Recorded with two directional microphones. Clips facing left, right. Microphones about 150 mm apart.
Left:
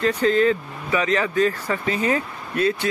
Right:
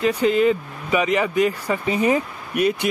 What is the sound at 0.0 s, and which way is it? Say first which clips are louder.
Speech: right 1 dB; 10° right (ahead or behind).